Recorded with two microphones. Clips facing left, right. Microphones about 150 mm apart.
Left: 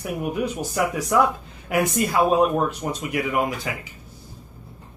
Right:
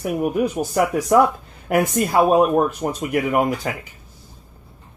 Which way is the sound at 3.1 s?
50° right (ahead or behind).